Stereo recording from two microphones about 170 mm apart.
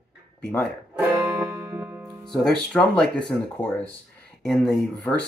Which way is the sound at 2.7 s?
5° left (ahead or behind).